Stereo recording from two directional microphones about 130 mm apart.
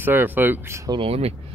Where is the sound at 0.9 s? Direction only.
50° right (ahead or behind).